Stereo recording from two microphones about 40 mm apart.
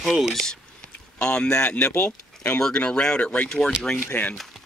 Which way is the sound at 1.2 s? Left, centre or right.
Left.